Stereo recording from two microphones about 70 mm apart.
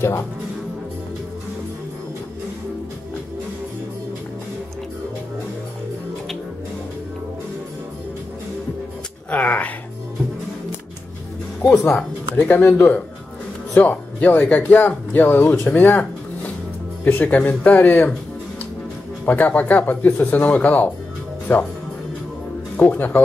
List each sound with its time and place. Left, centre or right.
9.3 s a sound: left
12.4 s speech: left
15.6 s a sound: left
17.0 s speech: left
19.2 s speech: left
22.8 s speech: left